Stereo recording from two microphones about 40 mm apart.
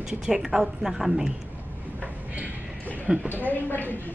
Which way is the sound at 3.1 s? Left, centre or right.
Right.